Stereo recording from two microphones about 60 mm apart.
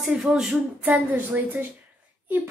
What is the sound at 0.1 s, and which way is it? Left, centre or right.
Speech, centre.